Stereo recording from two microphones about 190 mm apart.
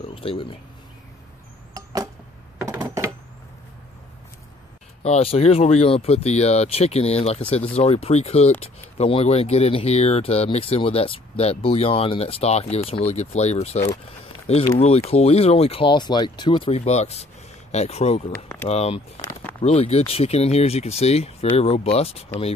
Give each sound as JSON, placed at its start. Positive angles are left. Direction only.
{"t": 0.0, "sound": "speech", "side_deg": 30}
{"t": 1.7, "sound": "a sound", "side_deg": -20}
{"t": 5.0, "sound": "speech", "side_deg": 30}